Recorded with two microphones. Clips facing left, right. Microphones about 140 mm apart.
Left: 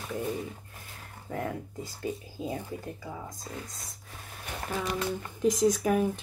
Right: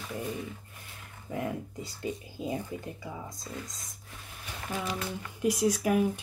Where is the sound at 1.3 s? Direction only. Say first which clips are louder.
Even; 10° right (ahead or behind).